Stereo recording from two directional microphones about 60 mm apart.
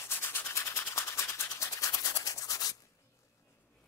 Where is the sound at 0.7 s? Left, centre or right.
Left.